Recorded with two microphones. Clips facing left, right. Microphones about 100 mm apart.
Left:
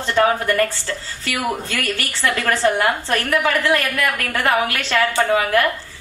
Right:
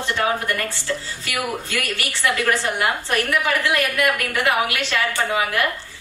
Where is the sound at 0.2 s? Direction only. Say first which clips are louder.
Left 8 dB; 50° left (ahead or behind).